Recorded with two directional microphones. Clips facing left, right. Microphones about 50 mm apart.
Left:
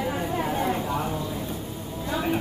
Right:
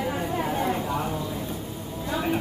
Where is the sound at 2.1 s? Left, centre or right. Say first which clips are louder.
Even; centre.